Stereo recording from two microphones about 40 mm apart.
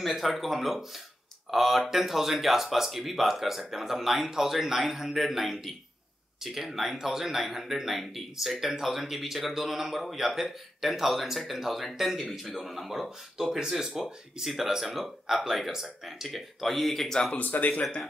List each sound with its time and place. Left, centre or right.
0.0 s speech: centre
17.4 s speech: left